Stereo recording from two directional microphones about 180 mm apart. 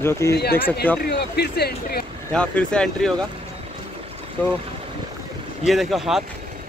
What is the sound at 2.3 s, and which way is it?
Speech, 5° left (ahead or behind).